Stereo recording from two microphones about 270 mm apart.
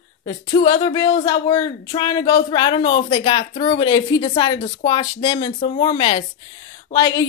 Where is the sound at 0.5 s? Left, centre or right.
Centre.